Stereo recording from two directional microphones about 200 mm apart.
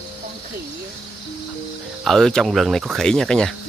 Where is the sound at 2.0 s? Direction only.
Centre (ahead or behind).